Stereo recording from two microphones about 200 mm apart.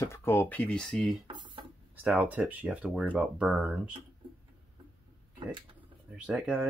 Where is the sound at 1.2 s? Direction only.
25° right (ahead or behind).